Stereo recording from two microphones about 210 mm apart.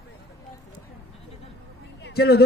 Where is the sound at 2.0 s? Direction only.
50° left (ahead or behind).